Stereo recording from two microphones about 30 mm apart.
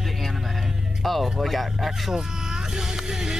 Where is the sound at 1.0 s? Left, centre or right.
Centre.